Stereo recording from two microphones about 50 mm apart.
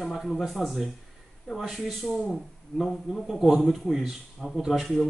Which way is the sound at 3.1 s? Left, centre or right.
Centre.